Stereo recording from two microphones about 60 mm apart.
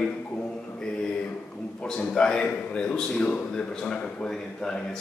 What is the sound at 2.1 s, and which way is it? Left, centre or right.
A man's voice, centre.